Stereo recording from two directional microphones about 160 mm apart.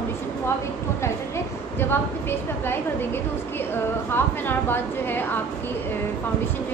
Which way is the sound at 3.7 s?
15° left (ahead or behind).